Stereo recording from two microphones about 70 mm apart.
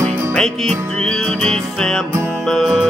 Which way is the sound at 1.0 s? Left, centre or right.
Centre.